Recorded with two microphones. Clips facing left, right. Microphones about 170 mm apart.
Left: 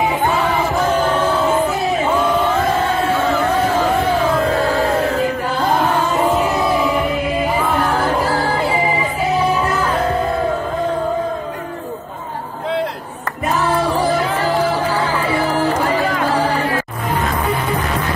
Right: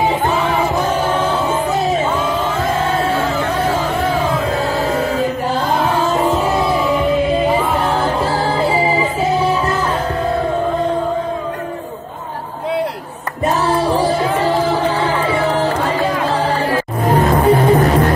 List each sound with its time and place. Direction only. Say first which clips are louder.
8.0 s music: even; 25° right (ahead or behind)
16.7 s music: right 5 dB; 35° right (ahead or behind)